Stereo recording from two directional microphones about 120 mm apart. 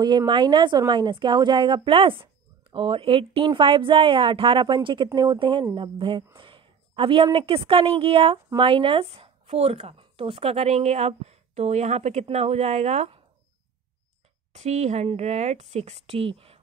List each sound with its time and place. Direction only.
0.3 s speech: 40° right (ahead or behind)
6.3 s a sound: 45° right (ahead or behind)
7.3 s speech: 50° right (ahead or behind); by 13.2 s 65° right (ahead or behind)
14.5 s a woman's voice: 65° right (ahead or behind)